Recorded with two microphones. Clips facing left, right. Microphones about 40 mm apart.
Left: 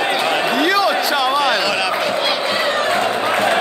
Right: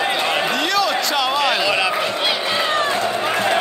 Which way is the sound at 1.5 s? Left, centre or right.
Centre.